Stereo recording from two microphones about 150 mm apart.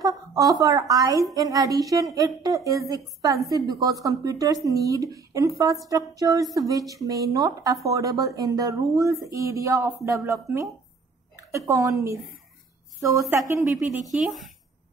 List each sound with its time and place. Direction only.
0.0 s a woman's voice: 25° right (ahead or behind)
14.1 s speech: centre (ahead or behind)